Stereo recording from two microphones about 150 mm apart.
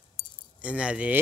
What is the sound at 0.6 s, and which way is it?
Speech, 5° right (ahead or behind).